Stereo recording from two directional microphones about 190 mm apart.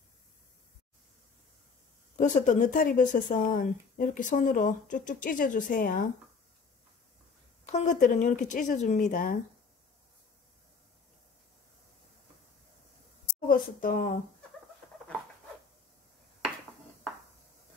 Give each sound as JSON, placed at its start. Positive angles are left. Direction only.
{"t": 2.1, "sound": "speech", "side_deg": 40}
{"t": 7.6, "sound": "speech", "side_deg": 40}
{"t": 13.5, "sound": "speech", "side_deg": 45}